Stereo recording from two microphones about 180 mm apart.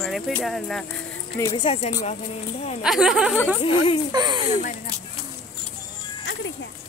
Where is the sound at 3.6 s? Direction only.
30° left (ahead or behind).